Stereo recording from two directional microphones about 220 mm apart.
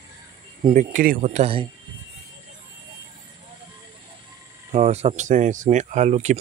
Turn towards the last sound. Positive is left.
turn(degrees=-30)  # may be behind; listen again after turning